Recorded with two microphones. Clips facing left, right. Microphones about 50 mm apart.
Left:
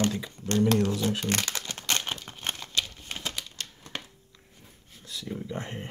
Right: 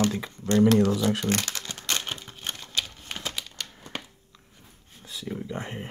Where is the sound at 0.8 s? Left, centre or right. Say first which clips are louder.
Right 4 dB; right.